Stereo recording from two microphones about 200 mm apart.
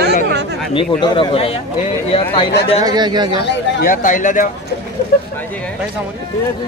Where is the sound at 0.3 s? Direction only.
55° right (ahead or behind).